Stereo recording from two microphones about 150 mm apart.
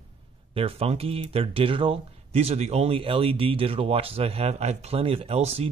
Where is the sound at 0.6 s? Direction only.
40° right (ahead or behind).